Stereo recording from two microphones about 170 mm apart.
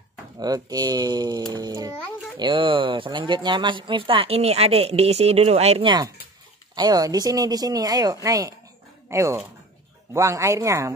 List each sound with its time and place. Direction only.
0.4 s a child's voice: 25° right (ahead or behind)